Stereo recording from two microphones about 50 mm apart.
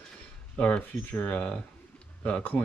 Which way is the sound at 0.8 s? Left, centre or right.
Left.